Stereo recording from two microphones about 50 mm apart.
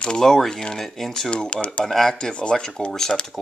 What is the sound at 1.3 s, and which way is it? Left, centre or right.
Speech, left.